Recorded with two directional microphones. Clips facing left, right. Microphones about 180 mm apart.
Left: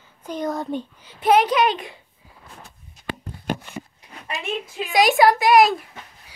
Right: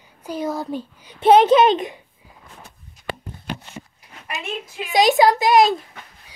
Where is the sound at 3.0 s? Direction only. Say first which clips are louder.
Right 1 dB; 25° left (ahead or behind).